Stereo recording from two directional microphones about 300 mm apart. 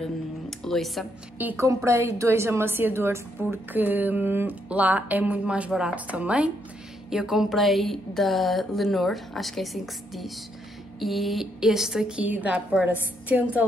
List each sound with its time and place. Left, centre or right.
0.0 s speech: centre